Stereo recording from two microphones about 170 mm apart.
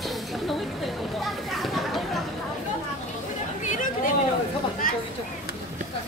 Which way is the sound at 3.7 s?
50° left (ahead or behind).